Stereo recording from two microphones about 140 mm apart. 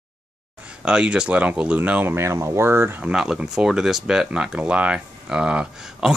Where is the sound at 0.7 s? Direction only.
5° right (ahead or behind).